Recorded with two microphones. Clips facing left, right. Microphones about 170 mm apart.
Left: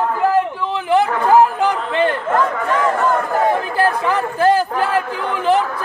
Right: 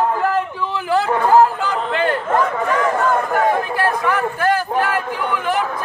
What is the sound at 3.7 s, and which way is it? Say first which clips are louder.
Chatter: left 2 dB; 30° left (ahead or behind).